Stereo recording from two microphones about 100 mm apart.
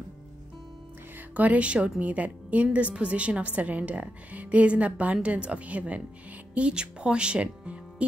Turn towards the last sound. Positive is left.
turn(degrees=-10)  # may be behind; listen again after turning